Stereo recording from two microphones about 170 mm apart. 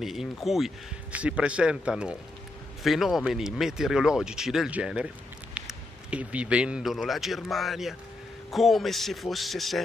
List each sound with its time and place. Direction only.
0.0 s speech: centre (ahead or behind)